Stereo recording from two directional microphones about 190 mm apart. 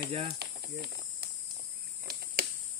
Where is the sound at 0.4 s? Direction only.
55° right (ahead or behind).